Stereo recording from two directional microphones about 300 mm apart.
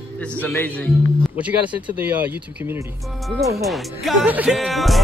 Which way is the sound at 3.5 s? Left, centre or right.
Centre.